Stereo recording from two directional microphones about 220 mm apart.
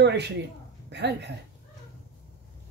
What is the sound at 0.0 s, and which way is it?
A woman's voice, 50° right (ahead or behind).